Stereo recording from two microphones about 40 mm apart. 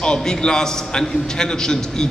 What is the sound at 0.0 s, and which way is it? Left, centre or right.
A man's voice, centre.